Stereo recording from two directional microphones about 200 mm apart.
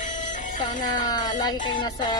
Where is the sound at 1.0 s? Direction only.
20° left (ahead or behind).